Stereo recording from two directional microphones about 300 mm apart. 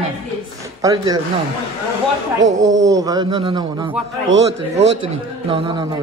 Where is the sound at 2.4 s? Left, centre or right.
Right.